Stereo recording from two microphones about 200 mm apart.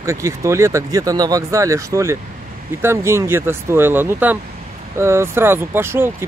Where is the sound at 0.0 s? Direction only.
15° right (ahead or behind).